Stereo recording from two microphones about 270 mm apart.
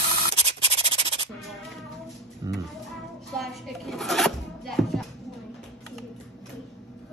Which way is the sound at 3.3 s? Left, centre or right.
Centre.